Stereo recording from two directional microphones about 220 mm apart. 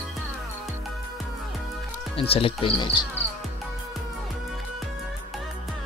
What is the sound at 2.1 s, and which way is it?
Speech, 25° left (ahead or behind).